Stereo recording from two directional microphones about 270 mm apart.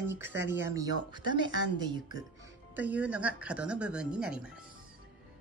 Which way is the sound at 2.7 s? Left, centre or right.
Centre.